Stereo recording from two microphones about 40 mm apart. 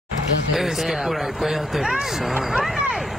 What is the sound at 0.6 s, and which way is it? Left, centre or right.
Speech, centre.